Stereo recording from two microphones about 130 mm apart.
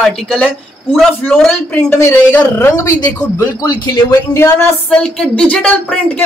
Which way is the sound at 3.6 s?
30° left (ahead or behind).